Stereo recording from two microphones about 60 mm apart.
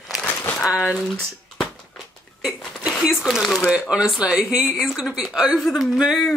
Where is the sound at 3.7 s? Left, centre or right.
Centre.